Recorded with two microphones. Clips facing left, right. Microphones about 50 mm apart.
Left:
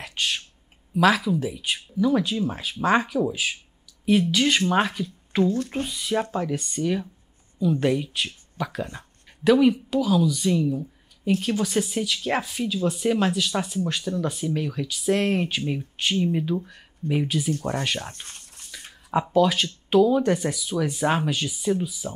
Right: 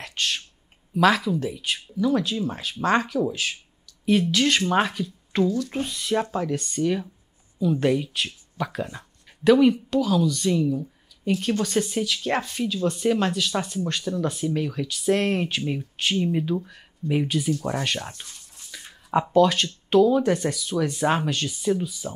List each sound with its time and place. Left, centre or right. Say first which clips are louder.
0.0 s a sound: even; centre
0.9 s speech: even; centre
5.4 s speech: even; left
5.7 s speech: right 1 dB; centre
18.7 s speech: right 2 dB; centre